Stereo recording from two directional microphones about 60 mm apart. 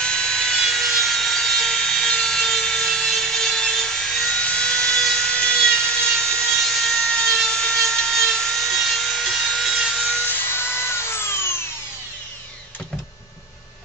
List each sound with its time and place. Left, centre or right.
0.0 s sawing: centre
4.4 s wood: centre
10.2 s wood: left